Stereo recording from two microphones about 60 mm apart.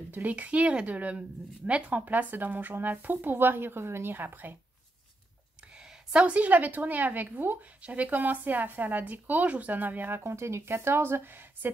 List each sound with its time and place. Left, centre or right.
0.1 s speech: right
5.8 s a woman's voice: centre; by 11.7 s right